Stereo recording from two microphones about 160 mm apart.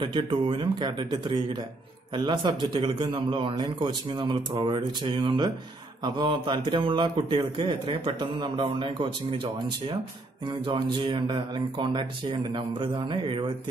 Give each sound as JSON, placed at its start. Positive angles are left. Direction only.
{"t": 0.0, "sound": "a man's voice", "side_deg": -30}
{"t": 10.6, "sound": "speech", "side_deg": -30}